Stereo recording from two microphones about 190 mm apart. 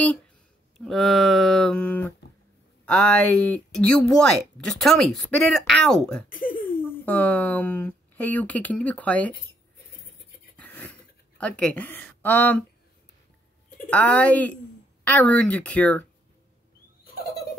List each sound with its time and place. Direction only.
0.7 s speech: centre (ahead or behind)
6.2 s speech: 45° left (ahead or behind)
7.1 s speech: 10° left (ahead or behind)
10.5 s a sound: 10° left (ahead or behind)
13.8 s speech: 5° left (ahead or behind)